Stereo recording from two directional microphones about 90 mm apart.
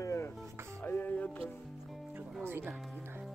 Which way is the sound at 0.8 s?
20° left (ahead or behind).